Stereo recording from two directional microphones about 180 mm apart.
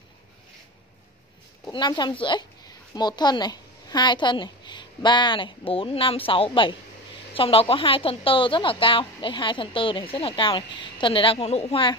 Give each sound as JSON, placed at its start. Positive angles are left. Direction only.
{"t": 1.7, "sound": "a woman's voice", "side_deg": 25}